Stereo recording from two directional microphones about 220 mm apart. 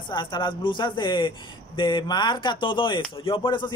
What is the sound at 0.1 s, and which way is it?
Speech, 20° left (ahead or behind).